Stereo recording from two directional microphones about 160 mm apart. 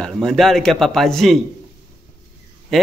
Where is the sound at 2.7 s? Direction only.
Centre (ahead or behind).